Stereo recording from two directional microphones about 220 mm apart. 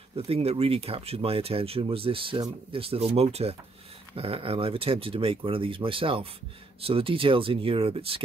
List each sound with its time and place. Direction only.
0.1 s speech: 25° right (ahead or behind)